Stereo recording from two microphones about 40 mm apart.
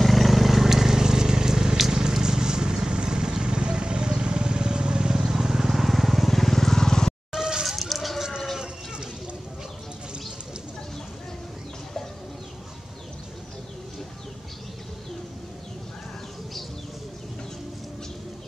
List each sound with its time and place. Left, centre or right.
0.0 s vehicle: centre
7.3 s a sound: centre
7.6 s chicken: centre